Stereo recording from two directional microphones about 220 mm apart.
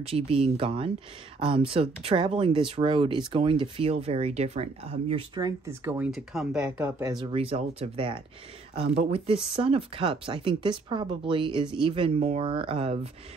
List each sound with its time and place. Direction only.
0.0 s speech: 25° right (ahead or behind); by 6.9 s 5° right (ahead or behind)
7.0 s speech: 20° right (ahead or behind)